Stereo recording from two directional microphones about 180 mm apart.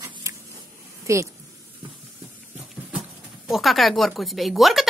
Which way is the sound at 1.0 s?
15° right (ahead or behind).